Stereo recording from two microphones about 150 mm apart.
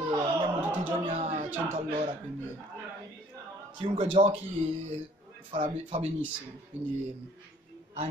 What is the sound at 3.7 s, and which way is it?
Speech, 35° right (ahead or behind).